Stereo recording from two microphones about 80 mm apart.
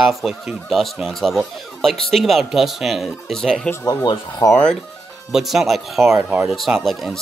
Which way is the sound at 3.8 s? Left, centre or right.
Left.